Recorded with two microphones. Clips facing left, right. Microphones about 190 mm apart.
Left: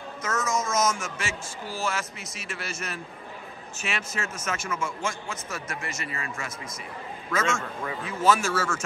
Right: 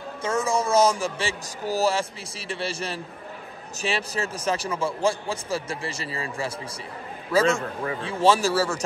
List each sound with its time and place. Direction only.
0.2 s a man's voice: 30° right (ahead or behind)